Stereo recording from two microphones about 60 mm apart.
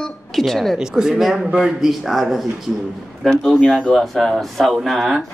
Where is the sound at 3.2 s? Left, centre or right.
Centre.